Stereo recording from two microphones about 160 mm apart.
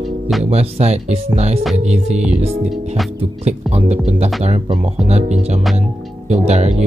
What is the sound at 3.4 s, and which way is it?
Speech, 45° right (ahead or behind).